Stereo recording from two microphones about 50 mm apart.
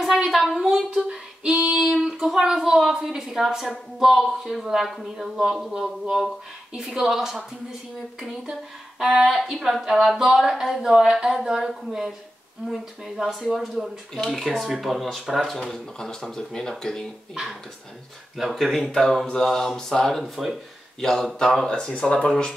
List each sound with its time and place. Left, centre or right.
0.0 s a sound: centre
1.0 s female singing: centre
2.0 s speech: centre
9.0 s speech: centre
9.3 s speech: centre
18.4 s speech: centre; by 22.3 s left